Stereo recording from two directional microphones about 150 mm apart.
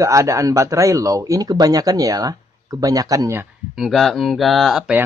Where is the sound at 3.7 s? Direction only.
Centre (ahead or behind).